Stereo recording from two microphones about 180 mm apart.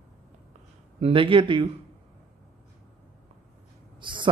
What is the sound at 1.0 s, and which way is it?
Speech, 30° right (ahead or behind).